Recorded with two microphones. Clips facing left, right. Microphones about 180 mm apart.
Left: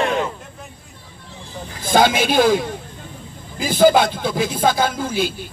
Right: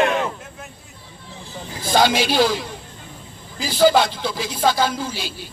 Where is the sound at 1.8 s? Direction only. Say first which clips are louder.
Left 2 dB; 50° left (ahead or behind).